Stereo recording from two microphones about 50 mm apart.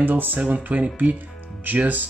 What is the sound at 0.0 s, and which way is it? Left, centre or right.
Speech, right.